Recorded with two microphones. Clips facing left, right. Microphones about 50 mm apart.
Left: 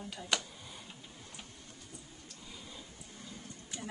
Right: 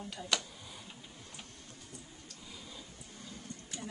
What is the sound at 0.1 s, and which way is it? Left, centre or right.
Speech, centre.